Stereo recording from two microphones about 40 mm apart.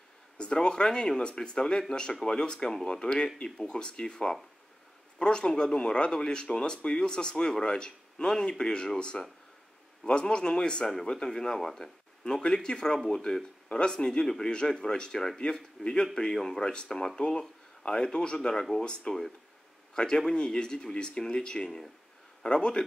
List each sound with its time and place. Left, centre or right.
0.4 s speech: left
10.2 s speech: left